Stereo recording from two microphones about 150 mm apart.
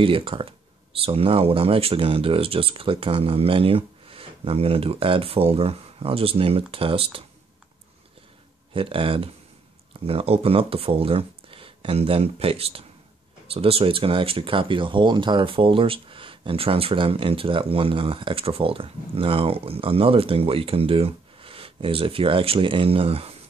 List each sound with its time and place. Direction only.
0.0 s speech: 35° right (ahead or behind)
8.7 s speech: 35° right (ahead or behind)